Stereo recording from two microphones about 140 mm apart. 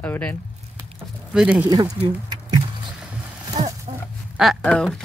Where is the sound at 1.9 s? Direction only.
35° right (ahead or behind).